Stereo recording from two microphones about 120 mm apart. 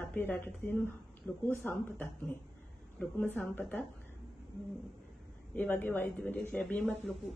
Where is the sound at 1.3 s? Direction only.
5° left (ahead or behind).